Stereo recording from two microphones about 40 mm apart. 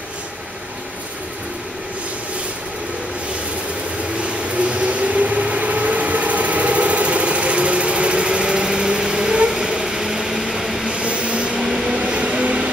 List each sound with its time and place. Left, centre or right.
4.2 s vehicle: right; by 10.9 s centre
10.9 s vehicle: right
11.6 s train: centre